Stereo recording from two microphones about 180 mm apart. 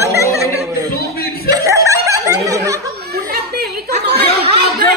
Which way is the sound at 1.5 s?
20° right (ahead or behind).